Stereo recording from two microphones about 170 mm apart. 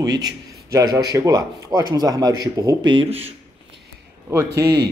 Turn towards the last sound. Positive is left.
turn(degrees=-25)  # may be behind; listen again after turning